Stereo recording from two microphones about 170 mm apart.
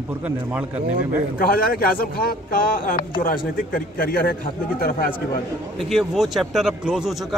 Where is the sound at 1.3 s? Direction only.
60° left (ahead or behind).